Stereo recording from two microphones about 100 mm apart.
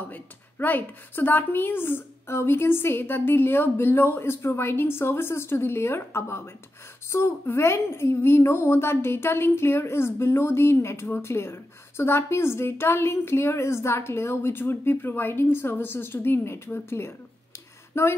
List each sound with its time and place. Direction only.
0.0 s a woman's voice: 15° left (ahead or behind)